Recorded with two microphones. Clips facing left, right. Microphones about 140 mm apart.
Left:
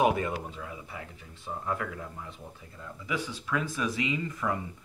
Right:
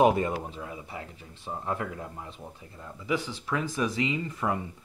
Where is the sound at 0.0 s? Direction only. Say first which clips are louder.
Right 3 dB; 30° right (ahead or behind).